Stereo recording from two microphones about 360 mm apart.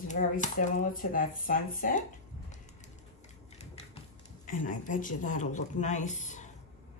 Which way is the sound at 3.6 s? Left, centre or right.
Centre.